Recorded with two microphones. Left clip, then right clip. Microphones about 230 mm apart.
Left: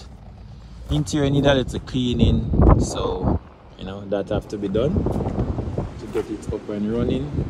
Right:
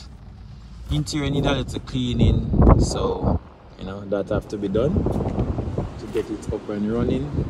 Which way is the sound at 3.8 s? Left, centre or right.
Centre.